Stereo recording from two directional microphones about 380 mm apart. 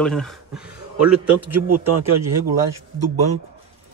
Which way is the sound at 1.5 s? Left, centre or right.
Right.